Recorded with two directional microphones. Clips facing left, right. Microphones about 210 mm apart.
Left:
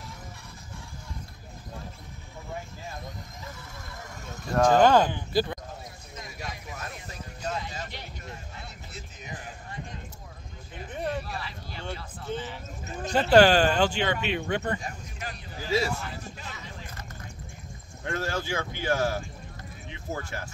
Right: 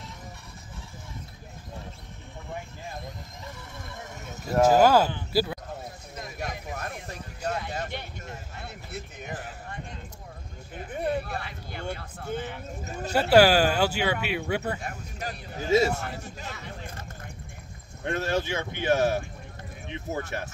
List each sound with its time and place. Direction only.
4.3 s speech: 5° right (ahead or behind)
5.3 s basketball bounce: 5° right (ahead or behind)
6.1 s music: 55° right (ahead or behind)
11.1 s a sound: 55° right (ahead or behind)
13.0 s speech: 10° right (ahead or behind)
15.2 s a sound: 40° right (ahead or behind)
15.5 s a man's voice: 25° right (ahead or behind)
15.9 s speech: 55° right (ahead or behind)
18.0 s speech: 20° right (ahead or behind)